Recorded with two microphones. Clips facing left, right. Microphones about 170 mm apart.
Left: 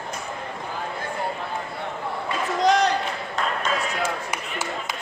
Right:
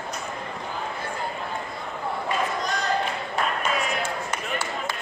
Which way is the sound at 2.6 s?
90° left.